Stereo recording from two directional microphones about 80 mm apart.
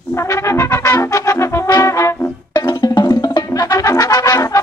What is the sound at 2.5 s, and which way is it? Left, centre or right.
Music, left.